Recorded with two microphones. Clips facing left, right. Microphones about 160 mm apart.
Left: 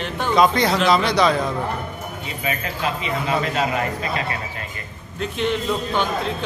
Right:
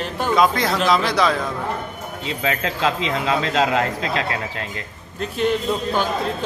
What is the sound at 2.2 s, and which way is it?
A man's voice, 90° right.